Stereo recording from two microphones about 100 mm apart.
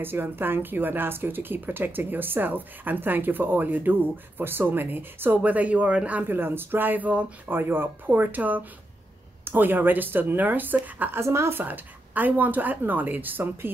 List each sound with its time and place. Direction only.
0.0 s speech: 20° right (ahead or behind)